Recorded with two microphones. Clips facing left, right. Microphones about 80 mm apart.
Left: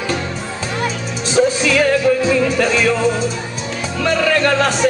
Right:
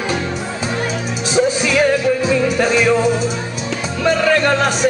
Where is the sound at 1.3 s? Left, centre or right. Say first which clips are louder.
Left 1 dB; centre.